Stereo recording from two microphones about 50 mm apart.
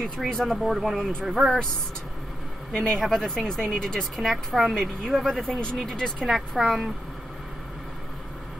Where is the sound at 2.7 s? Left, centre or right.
Centre.